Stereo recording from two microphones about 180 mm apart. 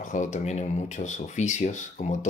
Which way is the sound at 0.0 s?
45° left (ahead or behind).